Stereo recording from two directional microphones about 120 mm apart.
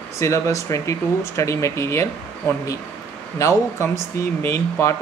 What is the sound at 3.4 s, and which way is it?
Speech, 25° left (ahead or behind).